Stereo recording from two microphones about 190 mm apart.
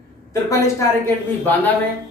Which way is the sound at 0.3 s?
15° left (ahead or behind).